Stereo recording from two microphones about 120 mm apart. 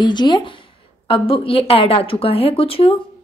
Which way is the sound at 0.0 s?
40° left (ahead or behind).